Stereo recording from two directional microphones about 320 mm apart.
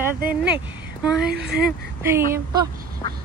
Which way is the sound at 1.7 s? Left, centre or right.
Centre.